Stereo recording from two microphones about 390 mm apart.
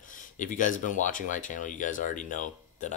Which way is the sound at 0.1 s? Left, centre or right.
Centre.